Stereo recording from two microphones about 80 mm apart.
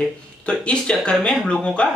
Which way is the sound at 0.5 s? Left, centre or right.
Centre.